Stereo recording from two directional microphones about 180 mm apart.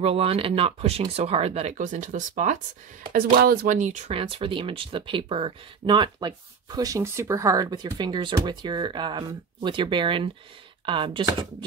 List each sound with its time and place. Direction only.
0.0 s speech: 35° right (ahead or behind)